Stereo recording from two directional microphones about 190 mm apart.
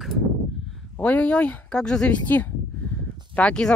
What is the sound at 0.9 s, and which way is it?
Speech, 10° left (ahead or behind).